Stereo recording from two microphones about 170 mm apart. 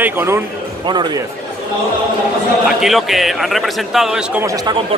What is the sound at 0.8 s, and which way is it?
Speech, 25° right (ahead or behind).